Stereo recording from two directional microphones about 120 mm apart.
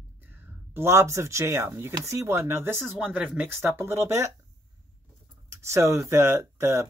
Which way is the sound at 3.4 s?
20° right (ahead or behind).